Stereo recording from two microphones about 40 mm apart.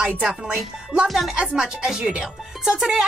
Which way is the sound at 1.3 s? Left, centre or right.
Right.